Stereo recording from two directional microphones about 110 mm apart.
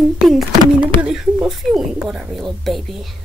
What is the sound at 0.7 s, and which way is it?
Speech, 10° right (ahead or behind).